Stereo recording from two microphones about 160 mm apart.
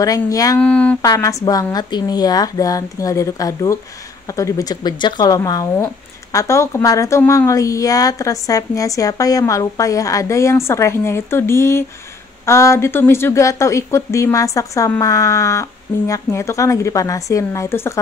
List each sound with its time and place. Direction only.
0.0 s a woman's voice: 20° left (ahead or behind)
0.6 s a sound: 10° left (ahead or behind)
1.0 s a woman's voice: 20° left (ahead or behind)